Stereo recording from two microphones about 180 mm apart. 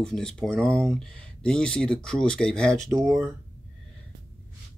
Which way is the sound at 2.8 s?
20° right (ahead or behind).